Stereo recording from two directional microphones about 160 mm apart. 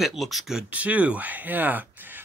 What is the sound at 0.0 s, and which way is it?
Speech, centre (ahead or behind).